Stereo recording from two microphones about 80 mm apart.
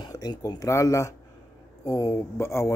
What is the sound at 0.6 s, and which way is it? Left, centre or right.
A man's voice, left.